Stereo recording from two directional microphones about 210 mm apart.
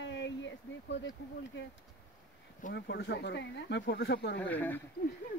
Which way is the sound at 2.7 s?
55° left (ahead or behind).